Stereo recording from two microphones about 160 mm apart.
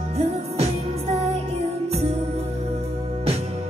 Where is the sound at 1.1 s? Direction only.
40° right (ahead or behind).